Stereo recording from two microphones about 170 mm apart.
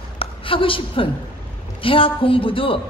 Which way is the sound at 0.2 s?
30° left (ahead or behind).